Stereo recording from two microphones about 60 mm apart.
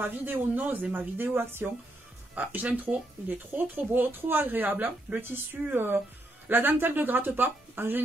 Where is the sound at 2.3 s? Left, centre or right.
Right.